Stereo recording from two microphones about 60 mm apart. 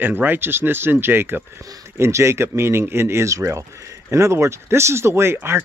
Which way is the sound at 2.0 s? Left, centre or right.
Right.